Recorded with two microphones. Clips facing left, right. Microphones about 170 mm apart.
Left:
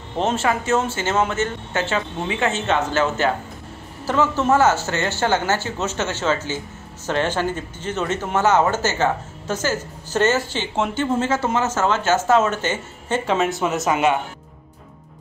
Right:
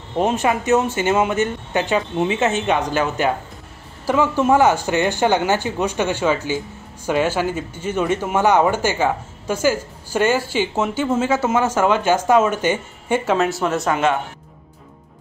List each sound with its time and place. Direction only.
0.2 s speech: 15° right (ahead or behind)
13.8 s speech: 5° left (ahead or behind)